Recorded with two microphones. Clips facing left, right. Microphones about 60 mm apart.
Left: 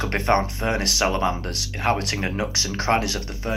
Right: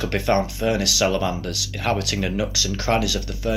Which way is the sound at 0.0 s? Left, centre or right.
Left.